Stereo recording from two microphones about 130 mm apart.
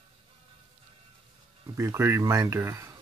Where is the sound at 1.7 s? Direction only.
20° right (ahead or behind).